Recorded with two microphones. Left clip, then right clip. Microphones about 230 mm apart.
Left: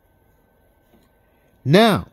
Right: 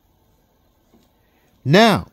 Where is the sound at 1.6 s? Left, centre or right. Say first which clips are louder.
Right 1 dB; centre.